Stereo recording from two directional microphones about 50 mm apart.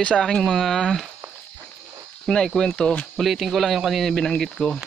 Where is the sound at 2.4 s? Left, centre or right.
Centre.